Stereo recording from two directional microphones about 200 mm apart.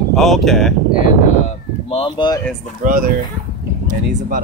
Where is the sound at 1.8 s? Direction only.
30° left (ahead or behind).